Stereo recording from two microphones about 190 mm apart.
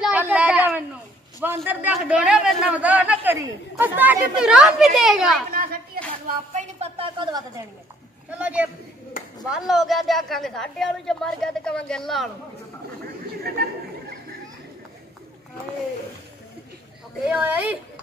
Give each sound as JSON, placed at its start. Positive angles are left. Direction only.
{"t": 0.0, "sound": "a sound", "side_deg": -10}
{"t": 1.7, "sound": "a man's voice", "side_deg": -10}
{"t": 5.5, "sound": "a sound", "side_deg": -50}
{"t": 6.2, "sound": "a woman's voice", "side_deg": -35}
{"t": 8.3, "sound": "a man's voice", "side_deg": -10}
{"t": 17.3, "sound": "a man's voice", "side_deg": -10}